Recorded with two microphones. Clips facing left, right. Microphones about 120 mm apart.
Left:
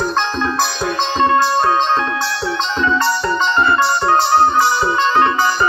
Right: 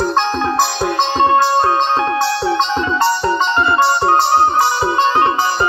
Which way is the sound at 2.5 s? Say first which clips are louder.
Right 1 dB; 20° right (ahead or behind).